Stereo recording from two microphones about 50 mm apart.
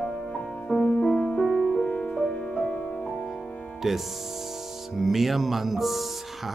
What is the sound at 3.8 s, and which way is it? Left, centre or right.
Speech, centre.